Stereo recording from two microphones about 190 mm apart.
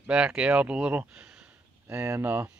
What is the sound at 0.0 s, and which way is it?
Speech, 5° right (ahead or behind).